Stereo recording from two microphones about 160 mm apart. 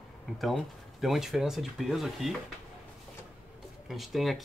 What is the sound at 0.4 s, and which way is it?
Speech, centre (ahead or behind).